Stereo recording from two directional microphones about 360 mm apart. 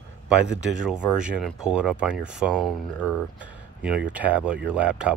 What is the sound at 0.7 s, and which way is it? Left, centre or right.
Speech, centre.